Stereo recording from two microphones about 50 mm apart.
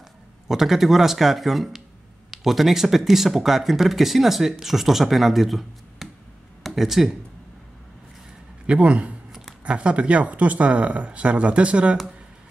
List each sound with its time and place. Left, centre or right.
0.5 s speech: centre
8.6 s speech: right